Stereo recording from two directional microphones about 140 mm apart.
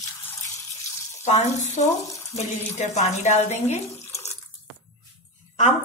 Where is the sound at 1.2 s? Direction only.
55° left (ahead or behind).